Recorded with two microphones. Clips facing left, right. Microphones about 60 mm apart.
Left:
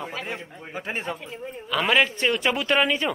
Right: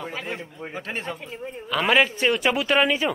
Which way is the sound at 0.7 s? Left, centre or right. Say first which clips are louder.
Left 2 dB; centre.